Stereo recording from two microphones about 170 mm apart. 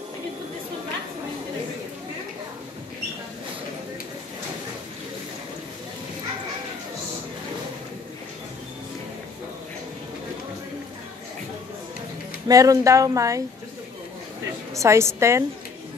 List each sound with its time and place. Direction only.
12.4 s speech: 20° right (ahead or behind)
14.8 s a woman's voice: 15° right (ahead or behind)